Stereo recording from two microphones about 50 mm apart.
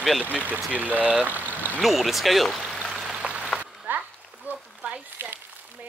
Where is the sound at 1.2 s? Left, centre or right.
Right.